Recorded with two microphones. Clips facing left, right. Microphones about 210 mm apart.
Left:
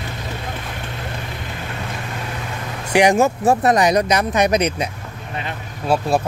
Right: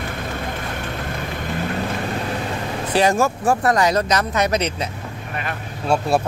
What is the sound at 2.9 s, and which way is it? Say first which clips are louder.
Speech: left 3 dB; 15° left (ahead or behind).